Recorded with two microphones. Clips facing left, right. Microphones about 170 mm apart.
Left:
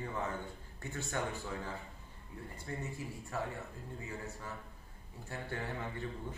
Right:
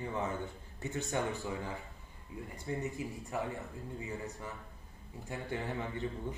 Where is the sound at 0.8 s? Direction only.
20° right (ahead or behind).